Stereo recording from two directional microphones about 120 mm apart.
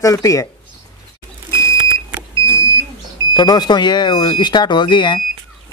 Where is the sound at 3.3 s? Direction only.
35° left (ahead or behind).